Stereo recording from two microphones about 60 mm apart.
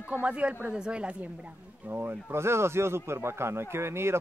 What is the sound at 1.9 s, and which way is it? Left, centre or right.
Speech, right.